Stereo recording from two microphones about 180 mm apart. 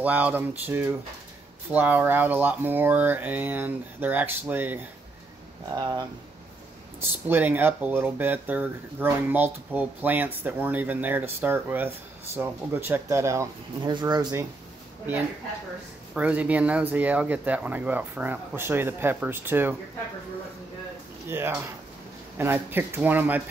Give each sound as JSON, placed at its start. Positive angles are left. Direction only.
{"t": 0.0, "sound": "speech", "side_deg": -10}
{"t": 5.8, "sound": "speech", "side_deg": -20}
{"t": 7.2, "sound": "speech", "side_deg": -10}
{"t": 16.2, "sound": "speech", "side_deg": -10}
{"t": 21.3, "sound": "speech", "side_deg": -10}